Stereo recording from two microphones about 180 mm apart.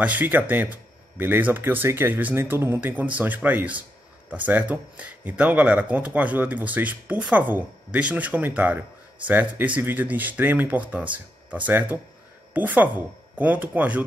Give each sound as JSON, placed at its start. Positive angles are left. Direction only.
{"t": 0.0, "sound": "speech", "side_deg": -10}